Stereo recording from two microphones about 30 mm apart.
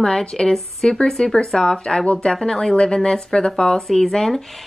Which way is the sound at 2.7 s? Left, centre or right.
Left.